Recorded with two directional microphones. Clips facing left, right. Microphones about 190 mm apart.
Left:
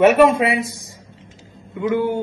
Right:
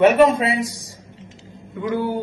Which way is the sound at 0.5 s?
55° left (ahead or behind).